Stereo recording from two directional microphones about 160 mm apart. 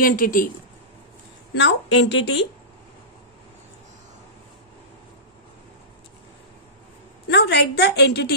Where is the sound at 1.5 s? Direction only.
90° left.